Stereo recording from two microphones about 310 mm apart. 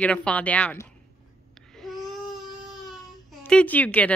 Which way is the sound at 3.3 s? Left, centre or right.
Centre.